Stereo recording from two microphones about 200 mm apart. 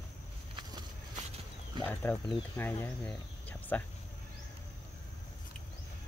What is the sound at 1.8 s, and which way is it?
Speech, 10° left (ahead or behind).